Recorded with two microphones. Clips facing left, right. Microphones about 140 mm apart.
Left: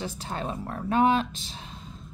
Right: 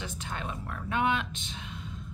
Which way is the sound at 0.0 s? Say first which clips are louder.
Left 5 dB; 35° left (ahead or behind).